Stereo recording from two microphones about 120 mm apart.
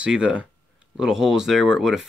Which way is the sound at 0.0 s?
10° right (ahead or behind).